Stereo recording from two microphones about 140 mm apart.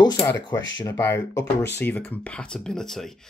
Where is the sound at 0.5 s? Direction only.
20° left (ahead or behind).